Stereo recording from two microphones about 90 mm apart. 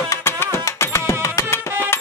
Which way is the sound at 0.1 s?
30° left (ahead or behind).